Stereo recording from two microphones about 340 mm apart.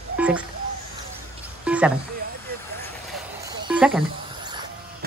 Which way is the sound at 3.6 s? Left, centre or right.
Centre.